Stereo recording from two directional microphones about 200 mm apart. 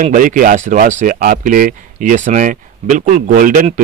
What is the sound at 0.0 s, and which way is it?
Speech, 40° right (ahead or behind).